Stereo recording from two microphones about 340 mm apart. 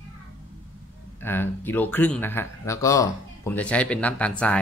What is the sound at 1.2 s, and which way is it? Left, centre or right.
A man's voice, centre.